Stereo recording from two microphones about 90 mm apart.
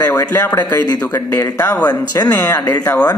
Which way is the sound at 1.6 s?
20° left (ahead or behind).